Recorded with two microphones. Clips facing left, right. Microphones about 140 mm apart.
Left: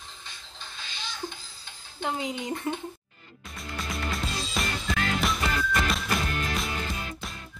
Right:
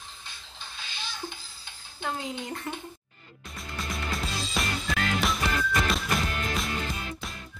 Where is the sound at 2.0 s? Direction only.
20° left (ahead or behind).